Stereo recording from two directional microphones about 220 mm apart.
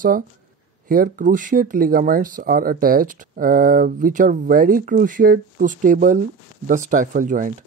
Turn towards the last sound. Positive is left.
turn(degrees=-35)  # may be behind; listen again after turning